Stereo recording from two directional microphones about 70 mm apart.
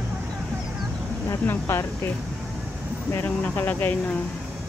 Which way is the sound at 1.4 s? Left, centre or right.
Left.